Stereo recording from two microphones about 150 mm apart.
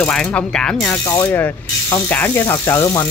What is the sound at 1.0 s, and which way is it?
Ratchet, 15° left (ahead or behind).